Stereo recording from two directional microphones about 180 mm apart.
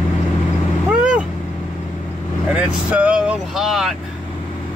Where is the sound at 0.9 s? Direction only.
5° right (ahead or behind).